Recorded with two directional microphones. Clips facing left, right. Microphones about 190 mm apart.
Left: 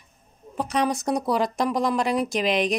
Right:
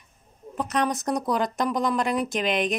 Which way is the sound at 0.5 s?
Centre (ahead or behind).